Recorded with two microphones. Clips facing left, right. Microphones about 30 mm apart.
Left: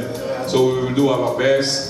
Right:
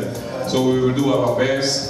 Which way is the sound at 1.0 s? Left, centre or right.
Centre.